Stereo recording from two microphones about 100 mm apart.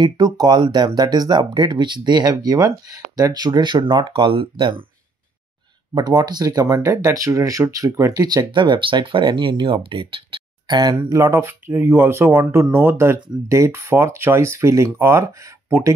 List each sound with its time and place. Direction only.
0.0 s speech: 45° right (ahead or behind)
2.3 s speech: 35° right (ahead or behind); by 4.8 s 60° right (ahead or behind)
5.9 s speech: 45° right (ahead or behind)
8.5 s speech: 55° right (ahead or behind)
11.1 s speech: 30° right (ahead or behind)